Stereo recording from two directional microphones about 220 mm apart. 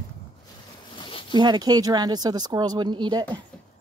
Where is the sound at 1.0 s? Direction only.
25° left (ahead or behind).